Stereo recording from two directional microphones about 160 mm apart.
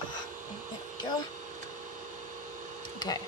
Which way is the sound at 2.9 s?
25° left (ahead or behind).